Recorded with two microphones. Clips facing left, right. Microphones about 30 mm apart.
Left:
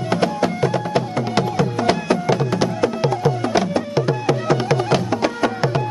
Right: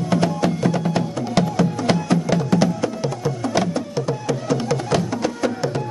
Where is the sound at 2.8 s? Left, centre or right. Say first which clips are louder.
Left 5 dB; left.